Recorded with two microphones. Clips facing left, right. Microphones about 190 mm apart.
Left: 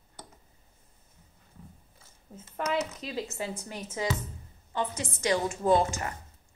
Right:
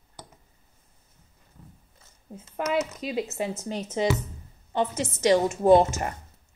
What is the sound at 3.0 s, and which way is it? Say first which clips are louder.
A woman's voice: right 6 dB; 20° right (ahead or behind).